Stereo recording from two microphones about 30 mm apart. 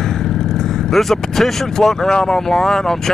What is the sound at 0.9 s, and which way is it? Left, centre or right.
Speech, centre.